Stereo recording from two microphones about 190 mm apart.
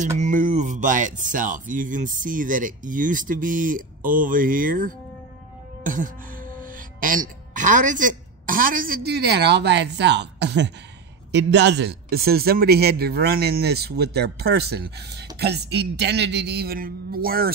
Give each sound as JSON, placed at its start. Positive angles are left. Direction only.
{"t": 0.2, "sound": "speech", "side_deg": -40}